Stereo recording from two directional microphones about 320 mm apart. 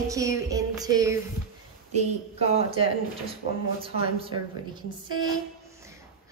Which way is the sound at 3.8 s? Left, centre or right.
Centre.